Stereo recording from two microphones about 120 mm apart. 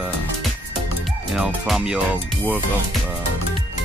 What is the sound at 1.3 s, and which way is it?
Music, 5° right (ahead or behind).